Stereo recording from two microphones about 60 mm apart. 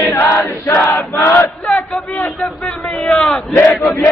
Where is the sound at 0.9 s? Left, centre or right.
Left.